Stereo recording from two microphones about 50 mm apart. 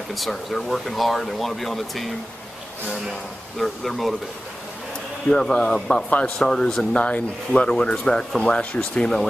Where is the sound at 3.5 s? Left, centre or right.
Centre.